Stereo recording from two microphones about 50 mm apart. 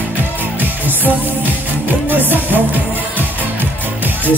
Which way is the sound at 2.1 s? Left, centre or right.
Right.